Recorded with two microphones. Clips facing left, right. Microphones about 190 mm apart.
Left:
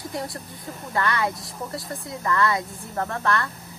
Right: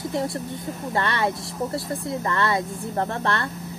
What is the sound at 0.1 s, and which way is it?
A woman's voice, 25° right (ahead or behind).